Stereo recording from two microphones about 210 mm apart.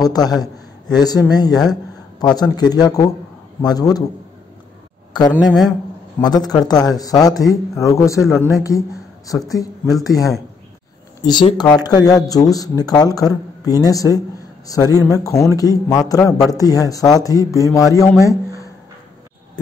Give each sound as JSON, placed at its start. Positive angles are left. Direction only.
{"t": 0.0, "sound": "a man's voice", "side_deg": 20}
{"t": 5.5, "sound": "speech", "side_deg": 0}
{"t": 6.2, "sound": "a man's voice", "side_deg": 20}
{"t": 8.2, "sound": "speech", "side_deg": 0}
{"t": 8.5, "sound": "speech", "side_deg": 15}
{"t": 11.1, "sound": "speech", "side_deg": 20}
{"t": 18.2, "sound": "a sound", "side_deg": 15}